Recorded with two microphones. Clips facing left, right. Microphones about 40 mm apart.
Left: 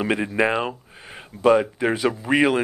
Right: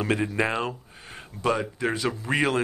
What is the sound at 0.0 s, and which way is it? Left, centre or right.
Speech, centre.